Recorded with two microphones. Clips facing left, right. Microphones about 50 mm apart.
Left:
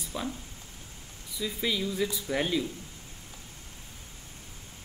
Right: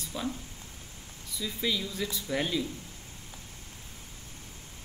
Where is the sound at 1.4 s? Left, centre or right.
Centre.